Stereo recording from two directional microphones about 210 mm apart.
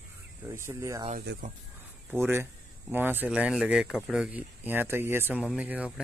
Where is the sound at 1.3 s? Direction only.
55° right (ahead or behind).